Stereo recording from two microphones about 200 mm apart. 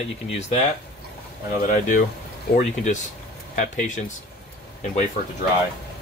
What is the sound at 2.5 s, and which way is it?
Speech, 35° left (ahead or behind).